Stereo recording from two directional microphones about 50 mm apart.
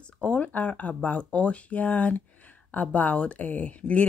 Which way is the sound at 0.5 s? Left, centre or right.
Left.